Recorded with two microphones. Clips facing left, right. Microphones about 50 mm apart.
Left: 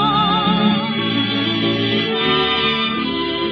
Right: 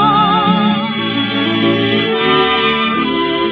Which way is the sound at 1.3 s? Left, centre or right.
Right.